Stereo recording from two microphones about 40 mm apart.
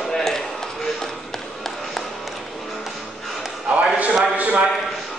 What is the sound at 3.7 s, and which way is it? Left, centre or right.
Speech, right.